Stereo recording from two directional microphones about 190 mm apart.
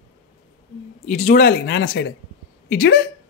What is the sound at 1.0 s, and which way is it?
Speech, 50° left (ahead or behind).